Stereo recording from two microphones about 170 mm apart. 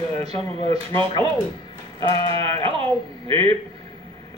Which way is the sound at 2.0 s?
35° right (ahead or behind).